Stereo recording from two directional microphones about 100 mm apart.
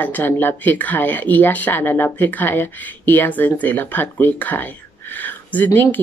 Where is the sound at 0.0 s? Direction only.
20° left (ahead or behind).